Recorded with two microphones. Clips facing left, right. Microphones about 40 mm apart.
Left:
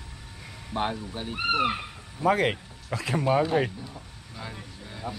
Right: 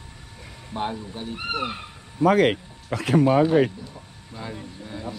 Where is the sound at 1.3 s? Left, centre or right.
Left.